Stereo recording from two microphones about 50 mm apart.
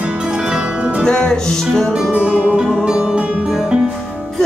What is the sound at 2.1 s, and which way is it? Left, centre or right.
Music, right.